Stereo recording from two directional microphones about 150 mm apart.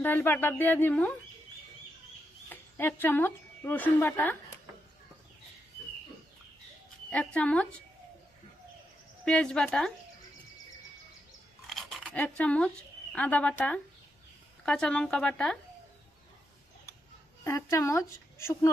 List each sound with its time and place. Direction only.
0.0 s speech: 15° left (ahead or behind)
2.5 s a woman's voice: 15° left (ahead or behind)
7.1 s speech: 10° left (ahead or behind)
9.2 s a woman's voice: 5° left (ahead or behind)
11.6 s chewing: centre (ahead or behind)
12.1 s a woman's voice: 10° left (ahead or behind)
17.4 s speech: 20° left (ahead or behind)